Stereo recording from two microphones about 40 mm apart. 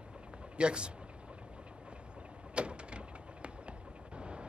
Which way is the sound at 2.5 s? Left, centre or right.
Right.